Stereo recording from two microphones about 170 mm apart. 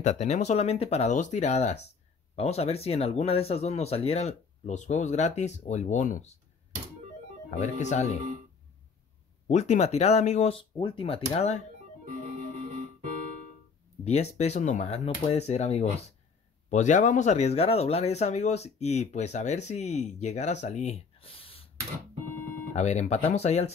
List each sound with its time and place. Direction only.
0.0 s speech: 45° left (ahead or behind)
7.6 s speech: 45° left (ahead or behind)
9.5 s speech: 40° left (ahead or behind)
12.0 s music: 45° right (ahead or behind)
14.0 s speech: 40° left (ahead or behind)
22.8 s speech: 40° left (ahead or behind)